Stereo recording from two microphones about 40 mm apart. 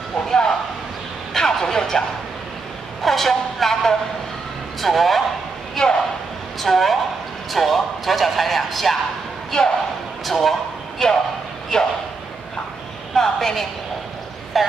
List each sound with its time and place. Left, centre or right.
1.3 s vehicle: centre
3.0 s a sound: centre
4.8 s speech: centre
5.8 s speech: centre
9.5 s speech: centre
10.2 s speech: centre
13.1 s a woman's voice: centre
14.5 s speech: centre